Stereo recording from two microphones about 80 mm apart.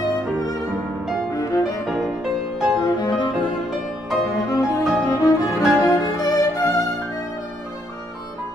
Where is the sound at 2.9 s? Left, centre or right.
Left.